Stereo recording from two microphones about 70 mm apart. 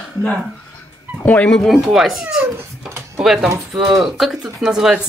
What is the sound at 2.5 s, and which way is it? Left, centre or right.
Cat, right.